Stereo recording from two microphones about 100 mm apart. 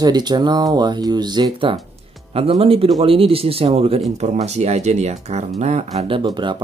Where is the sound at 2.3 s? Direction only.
85° right.